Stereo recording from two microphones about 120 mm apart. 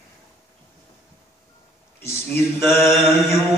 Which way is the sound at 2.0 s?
20° left (ahead or behind).